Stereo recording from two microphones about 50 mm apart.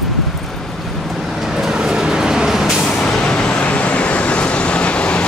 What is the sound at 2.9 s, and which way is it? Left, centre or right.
Vehicle, centre.